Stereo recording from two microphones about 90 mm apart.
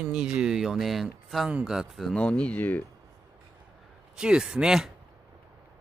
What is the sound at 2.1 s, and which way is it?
Speech, 15° left (ahead or behind).